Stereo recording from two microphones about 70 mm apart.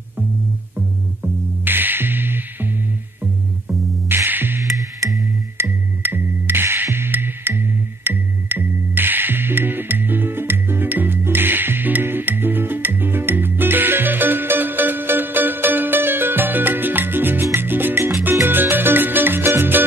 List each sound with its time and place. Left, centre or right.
1.6 s music: right